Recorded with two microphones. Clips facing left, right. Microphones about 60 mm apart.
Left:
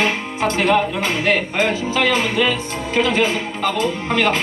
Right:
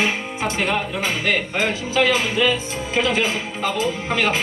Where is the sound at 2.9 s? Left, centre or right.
Centre.